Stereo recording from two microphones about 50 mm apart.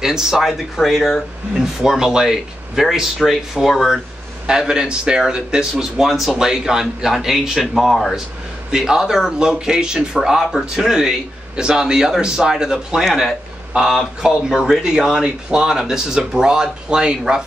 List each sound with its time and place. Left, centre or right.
0.0 s speech: centre
4.5 s speech: centre
8.7 s speech: centre
14.2 s speech: centre